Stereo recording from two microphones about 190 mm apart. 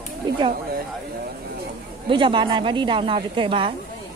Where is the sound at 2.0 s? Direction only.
25° right (ahead or behind).